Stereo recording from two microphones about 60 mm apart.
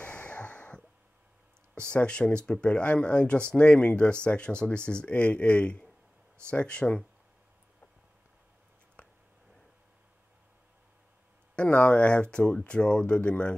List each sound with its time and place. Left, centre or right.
0.0 s a sound: left
1.8 s speech: centre
11.5 s speech: left